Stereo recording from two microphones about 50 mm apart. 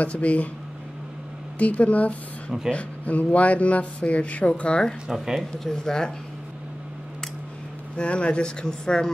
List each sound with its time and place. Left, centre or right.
0.0 s speech: left
1.6 s speech: left
5.1 s speech: centre
5.7 s speech: centre
7.9 s speech: left